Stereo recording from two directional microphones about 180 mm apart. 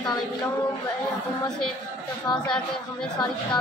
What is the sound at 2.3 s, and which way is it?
Speech, 5° left (ahead or behind).